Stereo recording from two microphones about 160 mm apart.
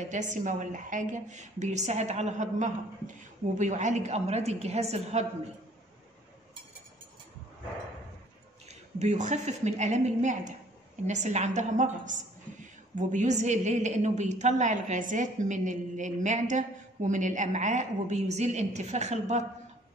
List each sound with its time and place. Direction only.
0.0 s a woman's voice: 50° right (ahead or behind)
8.6 s a woman's voice: 45° right (ahead or behind)